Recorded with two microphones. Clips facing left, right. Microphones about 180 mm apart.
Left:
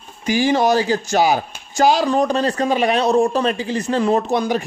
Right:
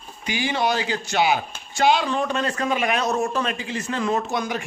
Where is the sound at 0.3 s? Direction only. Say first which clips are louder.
Left 8 dB; 40° left (ahead or behind).